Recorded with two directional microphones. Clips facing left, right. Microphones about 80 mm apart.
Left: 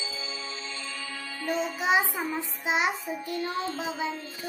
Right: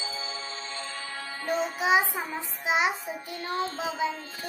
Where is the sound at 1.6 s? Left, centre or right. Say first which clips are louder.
Right 1 dB; centre.